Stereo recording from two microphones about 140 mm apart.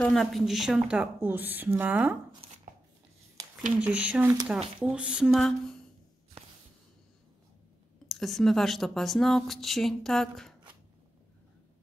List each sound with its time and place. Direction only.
0.0 s a woman's voice: 5° left (ahead or behind)
2.4 s a sound: 55° right (ahead or behind)
3.8 s a woman's voice: 10° right (ahead or behind)
8.1 s a woman's voice: centre (ahead or behind)